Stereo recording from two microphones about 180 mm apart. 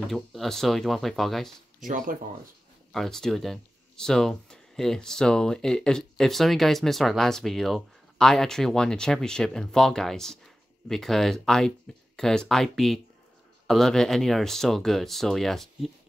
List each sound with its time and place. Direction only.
0.1 s speech: centre (ahead or behind)
1.9 s speech: 45° right (ahead or behind)
2.9 s speech: centre (ahead or behind)